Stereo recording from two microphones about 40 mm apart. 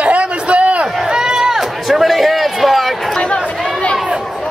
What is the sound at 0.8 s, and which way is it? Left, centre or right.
Run, centre.